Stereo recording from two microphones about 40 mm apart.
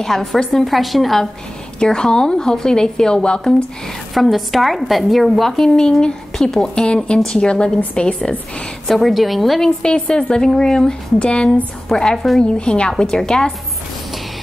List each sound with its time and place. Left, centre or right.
0.0 s speech: centre
1.9 s a woman's voice: centre
4.1 s speech: centre
5.8 s a woman's voice: centre
8.8 s speech: centre
9.6 s a woman's voice: left
11.1 s a woman's voice: left